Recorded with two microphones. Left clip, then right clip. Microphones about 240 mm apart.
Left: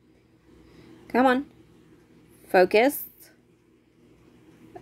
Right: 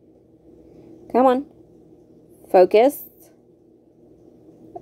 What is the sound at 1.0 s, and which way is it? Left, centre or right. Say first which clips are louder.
Speech: right 5 dB; centre.